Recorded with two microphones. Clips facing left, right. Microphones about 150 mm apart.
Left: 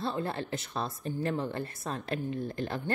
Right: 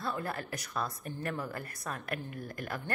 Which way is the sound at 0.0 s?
25° left (ahead or behind).